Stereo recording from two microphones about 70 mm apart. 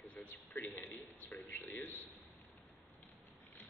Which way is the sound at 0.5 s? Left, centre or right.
Left.